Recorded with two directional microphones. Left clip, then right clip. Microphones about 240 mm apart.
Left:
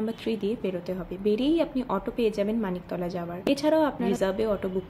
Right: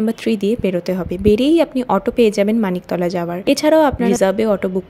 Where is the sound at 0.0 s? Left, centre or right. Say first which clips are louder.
Right 11 dB; right.